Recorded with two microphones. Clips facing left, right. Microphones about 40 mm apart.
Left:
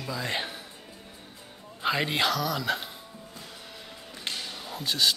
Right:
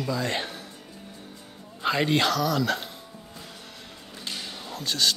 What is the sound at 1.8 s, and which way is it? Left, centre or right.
A man's voice, centre.